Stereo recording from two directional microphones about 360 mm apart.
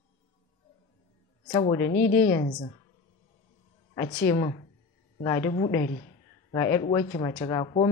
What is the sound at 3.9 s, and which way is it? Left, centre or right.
Speech, centre.